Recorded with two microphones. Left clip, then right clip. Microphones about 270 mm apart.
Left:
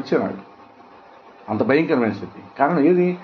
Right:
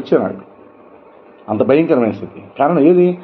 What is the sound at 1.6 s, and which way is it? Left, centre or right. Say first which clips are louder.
A man's voice: right 5 dB; centre.